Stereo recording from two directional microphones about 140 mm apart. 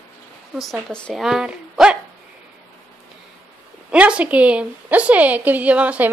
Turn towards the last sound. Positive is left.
turn(degrees=-10)  # may be behind; listen again after turning